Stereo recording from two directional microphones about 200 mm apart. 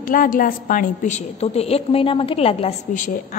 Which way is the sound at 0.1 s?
45° left (ahead or behind).